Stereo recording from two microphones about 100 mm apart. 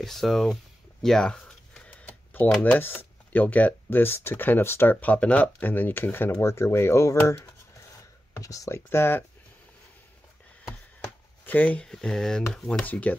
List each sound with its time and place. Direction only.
0.0 s speech: centre (ahead or behind)
1.0 s cash register: 5° left (ahead or behind)
2.6 s speech: 20° left (ahead or behind)
8.4 s speech: 35° left (ahead or behind)
10.7 s speech: 15° left (ahead or behind)
12.8 s speech: 15° left (ahead or behind)